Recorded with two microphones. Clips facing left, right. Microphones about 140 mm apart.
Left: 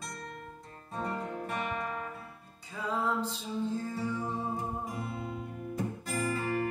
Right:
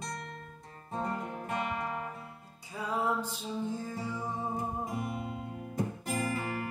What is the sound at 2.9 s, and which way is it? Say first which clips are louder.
Music: even; 15° right (ahead or behind).